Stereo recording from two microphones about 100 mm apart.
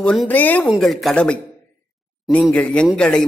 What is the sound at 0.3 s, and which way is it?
Speech, 15° left (ahead or behind).